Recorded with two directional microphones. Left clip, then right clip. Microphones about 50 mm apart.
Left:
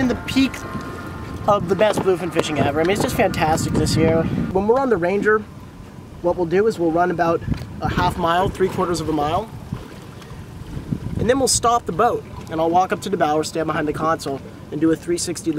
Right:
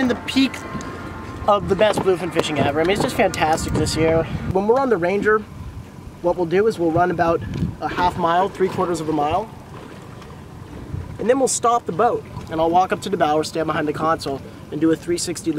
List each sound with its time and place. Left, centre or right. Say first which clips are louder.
0.0 s speech: even; centre
6.4 s speech: even; centre
7.8 s speech: right 1 dB; left
11.1 s speech: even; left
12.4 s speech: right 1 dB; centre